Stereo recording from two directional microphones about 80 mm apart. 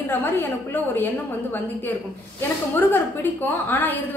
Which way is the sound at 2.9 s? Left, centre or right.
Left.